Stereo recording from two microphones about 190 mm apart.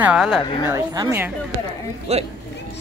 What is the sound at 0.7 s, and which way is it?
Speech, 20° right (ahead or behind).